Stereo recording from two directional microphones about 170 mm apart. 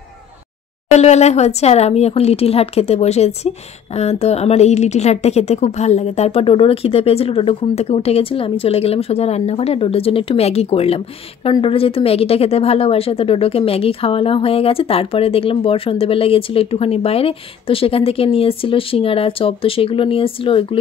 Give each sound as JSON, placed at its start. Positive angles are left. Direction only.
{"t": 0.9, "sound": "speech", "side_deg": 40}